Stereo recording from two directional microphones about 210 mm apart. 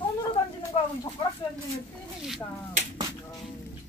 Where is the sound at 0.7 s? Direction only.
20° left (ahead or behind).